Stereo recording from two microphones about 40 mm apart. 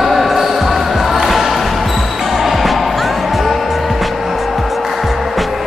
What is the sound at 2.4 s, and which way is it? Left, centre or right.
Basketball bounce, centre.